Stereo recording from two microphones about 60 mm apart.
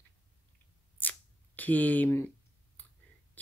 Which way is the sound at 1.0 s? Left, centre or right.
Left.